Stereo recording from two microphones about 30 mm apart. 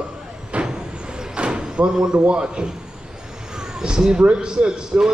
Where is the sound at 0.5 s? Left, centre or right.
Right.